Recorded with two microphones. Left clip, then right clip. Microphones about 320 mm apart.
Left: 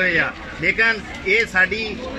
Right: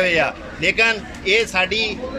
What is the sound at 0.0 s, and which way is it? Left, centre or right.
A man's voice, centre.